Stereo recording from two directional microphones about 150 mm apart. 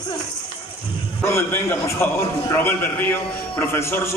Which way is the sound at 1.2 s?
15° left (ahead or behind).